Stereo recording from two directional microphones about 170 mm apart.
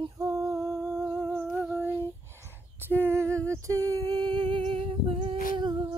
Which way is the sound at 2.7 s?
15° right (ahead or behind).